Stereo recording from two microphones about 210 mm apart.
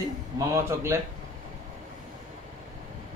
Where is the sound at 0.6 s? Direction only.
10° right (ahead or behind).